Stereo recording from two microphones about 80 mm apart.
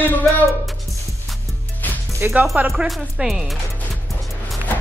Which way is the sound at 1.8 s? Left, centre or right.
Left.